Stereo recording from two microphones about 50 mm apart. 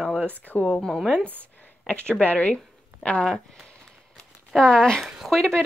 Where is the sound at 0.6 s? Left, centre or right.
Centre.